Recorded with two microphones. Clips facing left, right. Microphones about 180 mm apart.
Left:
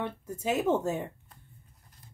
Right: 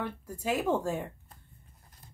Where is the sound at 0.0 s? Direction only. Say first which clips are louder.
Left 2 dB; 25° left (ahead or behind).